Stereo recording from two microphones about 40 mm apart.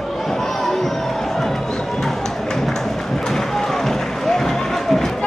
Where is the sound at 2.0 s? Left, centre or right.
Centre.